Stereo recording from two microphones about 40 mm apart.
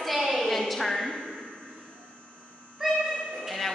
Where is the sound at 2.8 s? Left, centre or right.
Centre.